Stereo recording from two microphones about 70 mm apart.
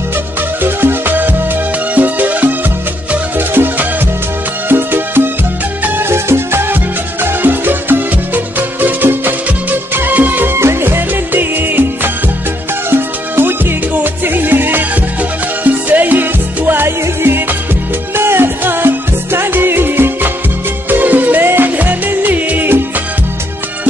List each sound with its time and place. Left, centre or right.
0.6 s music: right